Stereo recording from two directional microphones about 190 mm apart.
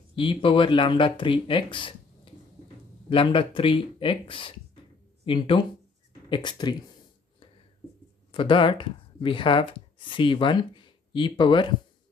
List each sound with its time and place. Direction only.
0.1 s speech: 25° left (ahead or behind)
3.1 s speech: 25° left (ahead or behind)
8.3 s speech: 25° left (ahead or behind)